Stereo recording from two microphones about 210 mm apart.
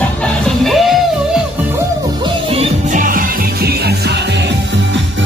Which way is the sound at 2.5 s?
40° right (ahead or behind).